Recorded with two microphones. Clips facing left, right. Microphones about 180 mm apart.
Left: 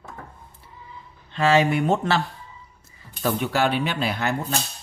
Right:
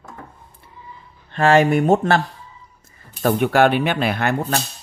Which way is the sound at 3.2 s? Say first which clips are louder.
Right 7 dB; 55° right (ahead or behind).